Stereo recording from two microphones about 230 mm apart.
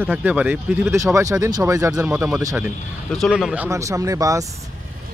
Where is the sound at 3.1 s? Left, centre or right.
Centre.